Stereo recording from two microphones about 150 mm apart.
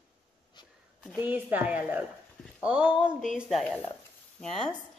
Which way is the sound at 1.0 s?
10° right (ahead or behind).